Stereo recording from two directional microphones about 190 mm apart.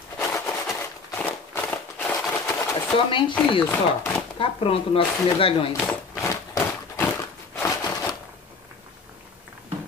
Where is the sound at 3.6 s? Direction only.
10° left (ahead or behind).